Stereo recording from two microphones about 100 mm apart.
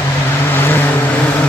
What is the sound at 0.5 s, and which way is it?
Vehicle, 20° left (ahead or behind).